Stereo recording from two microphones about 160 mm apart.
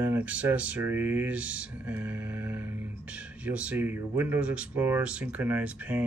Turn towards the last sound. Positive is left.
turn(degrees=-10)  # may be behind; listen again after turning